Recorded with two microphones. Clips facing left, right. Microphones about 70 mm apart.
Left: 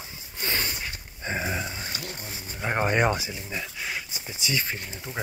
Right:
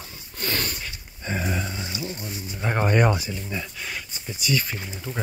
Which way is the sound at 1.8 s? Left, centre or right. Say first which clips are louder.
Right 4 dB; left.